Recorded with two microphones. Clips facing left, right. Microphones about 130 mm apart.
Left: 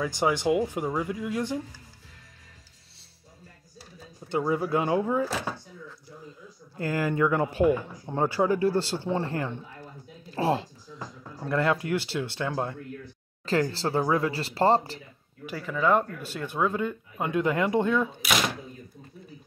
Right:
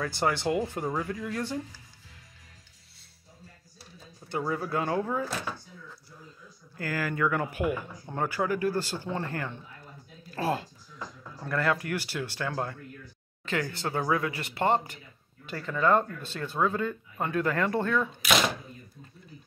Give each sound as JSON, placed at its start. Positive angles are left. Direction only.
{"t": 0.0, "sound": "speech", "side_deg": 15}
{"t": 4.3, "sound": "speech", "side_deg": 20}
{"t": 6.8, "sound": "speech", "side_deg": 25}
{"t": 15.4, "sound": "speech", "side_deg": 5}